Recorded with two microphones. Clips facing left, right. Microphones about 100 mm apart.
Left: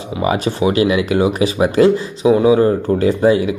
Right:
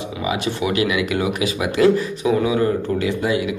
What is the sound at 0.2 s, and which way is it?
Speech, 45° left (ahead or behind).